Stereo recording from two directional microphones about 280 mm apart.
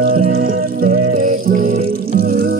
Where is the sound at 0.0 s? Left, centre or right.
Right.